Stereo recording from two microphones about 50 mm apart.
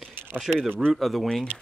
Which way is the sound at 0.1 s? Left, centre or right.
Right.